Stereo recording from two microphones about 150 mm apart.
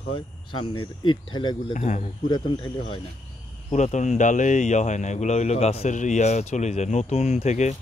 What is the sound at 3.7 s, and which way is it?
Speech, 50° left (ahead or behind).